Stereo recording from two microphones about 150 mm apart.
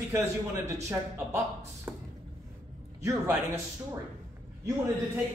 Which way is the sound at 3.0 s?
20° right (ahead or behind).